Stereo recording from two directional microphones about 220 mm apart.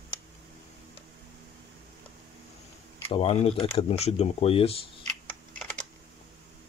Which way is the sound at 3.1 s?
25° left (ahead or behind).